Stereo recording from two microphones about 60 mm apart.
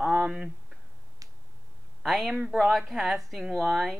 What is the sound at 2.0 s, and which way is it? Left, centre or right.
Speech, centre.